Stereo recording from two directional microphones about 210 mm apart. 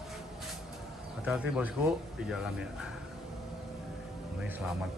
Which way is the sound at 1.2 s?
5° right (ahead or behind).